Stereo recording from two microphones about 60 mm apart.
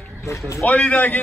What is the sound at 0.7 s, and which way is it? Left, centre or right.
Speech, left.